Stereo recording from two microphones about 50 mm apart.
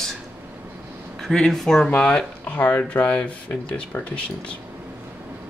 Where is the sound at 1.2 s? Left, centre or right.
Centre.